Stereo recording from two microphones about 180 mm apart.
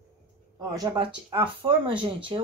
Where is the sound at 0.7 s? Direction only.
25° right (ahead or behind).